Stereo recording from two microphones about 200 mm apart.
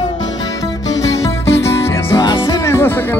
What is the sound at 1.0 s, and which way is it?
Music, 15° left (ahead or behind).